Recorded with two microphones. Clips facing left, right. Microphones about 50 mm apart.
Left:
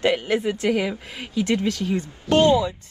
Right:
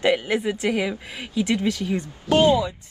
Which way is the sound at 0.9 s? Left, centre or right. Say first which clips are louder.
Even; right.